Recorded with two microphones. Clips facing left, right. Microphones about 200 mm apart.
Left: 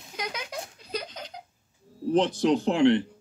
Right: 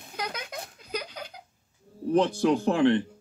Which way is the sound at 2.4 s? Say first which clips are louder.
Even; 20° left (ahead or behind).